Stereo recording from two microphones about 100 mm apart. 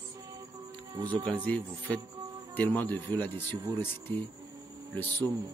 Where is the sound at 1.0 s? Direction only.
50° right (ahead or behind).